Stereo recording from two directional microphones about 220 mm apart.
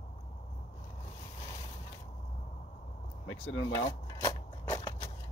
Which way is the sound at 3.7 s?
15° left (ahead or behind).